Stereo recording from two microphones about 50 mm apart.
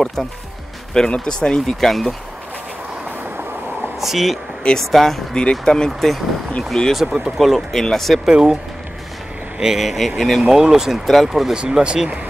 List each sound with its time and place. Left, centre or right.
0.0 s speech: centre
4.0 s speech: centre
5.3 s speech: centre
5.9 s speech: centre
8.3 s speech: centre
9.6 s speech: centre
10.5 s speech: centre
11.5 s speech: centre